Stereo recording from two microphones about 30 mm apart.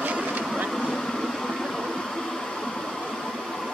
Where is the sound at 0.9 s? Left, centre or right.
Centre.